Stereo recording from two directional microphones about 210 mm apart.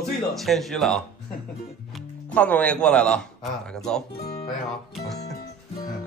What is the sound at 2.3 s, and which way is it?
Speech, 5° left (ahead or behind).